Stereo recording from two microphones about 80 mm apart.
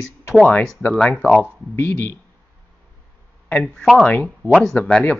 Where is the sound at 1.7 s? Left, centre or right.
Left.